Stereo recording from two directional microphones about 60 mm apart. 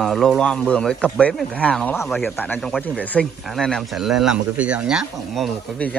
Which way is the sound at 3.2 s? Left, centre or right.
Centre.